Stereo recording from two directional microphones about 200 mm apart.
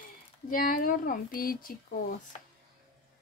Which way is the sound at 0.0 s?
45° left (ahead or behind).